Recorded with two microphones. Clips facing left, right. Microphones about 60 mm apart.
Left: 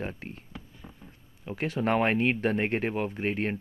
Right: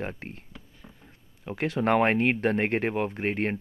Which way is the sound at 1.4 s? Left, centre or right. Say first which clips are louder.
Right 2 dB; right.